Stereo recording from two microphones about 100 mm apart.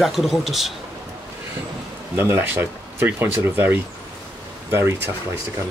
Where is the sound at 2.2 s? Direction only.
20° right (ahead or behind).